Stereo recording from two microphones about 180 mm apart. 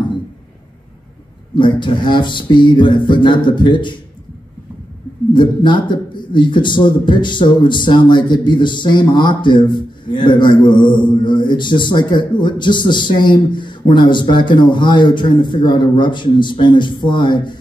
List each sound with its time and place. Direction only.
1.5 s a man's voice: 25° left (ahead or behind)
5.3 s a man's voice: 25° left (ahead or behind)